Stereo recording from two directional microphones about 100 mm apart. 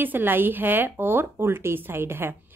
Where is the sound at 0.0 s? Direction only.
20° right (ahead or behind).